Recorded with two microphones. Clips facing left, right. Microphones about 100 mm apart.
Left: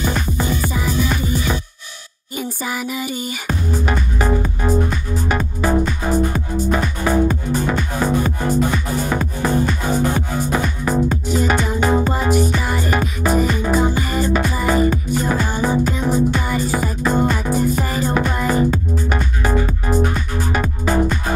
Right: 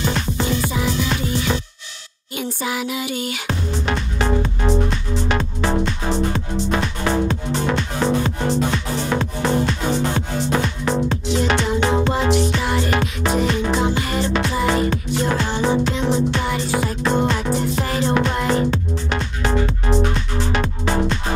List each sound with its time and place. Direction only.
0.0 s music: 10° left (ahead or behind)
2.6 s music: centre (ahead or behind)
3.1 s music: 70° right (ahead or behind)
3.4 s music: 5° left (ahead or behind)